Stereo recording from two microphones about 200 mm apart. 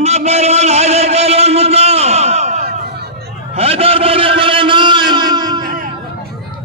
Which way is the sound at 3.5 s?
30° right (ahead or behind).